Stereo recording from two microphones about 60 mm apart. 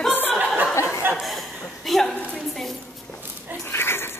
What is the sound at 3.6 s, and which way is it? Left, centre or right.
Dog, left.